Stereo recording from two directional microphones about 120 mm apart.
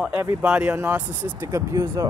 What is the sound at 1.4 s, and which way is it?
Speech, 25° right (ahead or behind).